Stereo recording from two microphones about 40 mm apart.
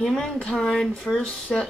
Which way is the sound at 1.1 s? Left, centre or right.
Left.